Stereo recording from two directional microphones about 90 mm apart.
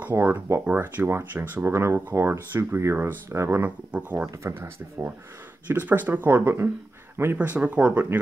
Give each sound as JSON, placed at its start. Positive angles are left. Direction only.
{"t": 0.0, "sound": "speech", "side_deg": -20}
{"t": 3.9, "sound": "speech", "side_deg": -15}
{"t": 4.4, "sound": "speech", "side_deg": -25}
{"t": 7.3, "sound": "speech", "side_deg": -15}